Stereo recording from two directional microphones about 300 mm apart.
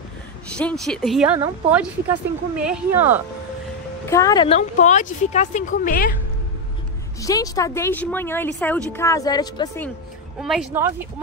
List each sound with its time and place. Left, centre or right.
0.6 s speech: centre
4.1 s speech: centre; by 6.1 s left
7.2 s speech: centre
10.4 s speech: centre